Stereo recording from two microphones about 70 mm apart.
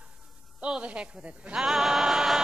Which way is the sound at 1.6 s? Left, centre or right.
Centre.